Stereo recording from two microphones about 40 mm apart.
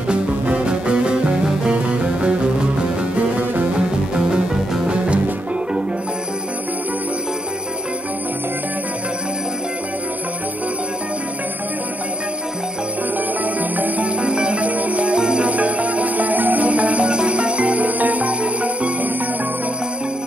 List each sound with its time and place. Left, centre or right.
0.1 s music: right
3.2 s music: right
3.8 s music: right
13.6 s music: right
14.6 s music: right
15.1 s music: right
15.4 s music: right